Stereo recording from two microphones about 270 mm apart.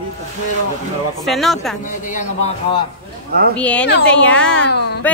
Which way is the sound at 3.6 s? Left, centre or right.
Centre.